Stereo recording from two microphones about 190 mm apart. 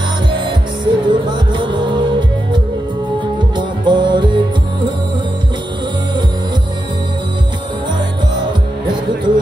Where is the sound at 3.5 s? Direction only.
25° right (ahead or behind).